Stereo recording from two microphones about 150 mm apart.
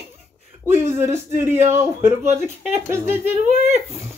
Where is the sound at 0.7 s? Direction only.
15° right (ahead or behind).